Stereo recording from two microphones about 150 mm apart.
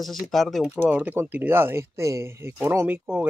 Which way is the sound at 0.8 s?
10° right (ahead or behind).